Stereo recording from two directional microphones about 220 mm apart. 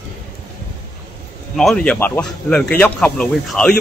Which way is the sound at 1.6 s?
5° left (ahead or behind).